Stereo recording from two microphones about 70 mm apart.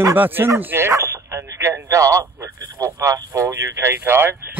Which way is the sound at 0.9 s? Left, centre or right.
Right.